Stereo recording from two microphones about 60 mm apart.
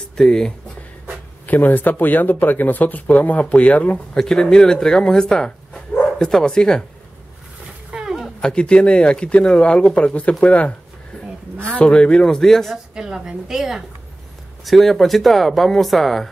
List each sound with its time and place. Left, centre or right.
0.2 s speech: centre
1.4 s speech: left
4.2 s speech: centre
7.9 s a sound: centre
8.4 s speech: centre
11.5 s speech: right
11.8 s speech: centre
12.9 s a woman's voice: centre